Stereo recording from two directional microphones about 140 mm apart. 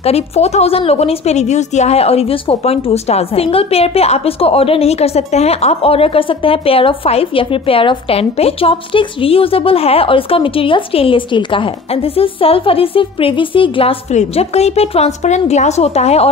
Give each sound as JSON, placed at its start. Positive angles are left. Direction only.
{"t": 0.0, "sound": "a woman's voice", "side_deg": 50}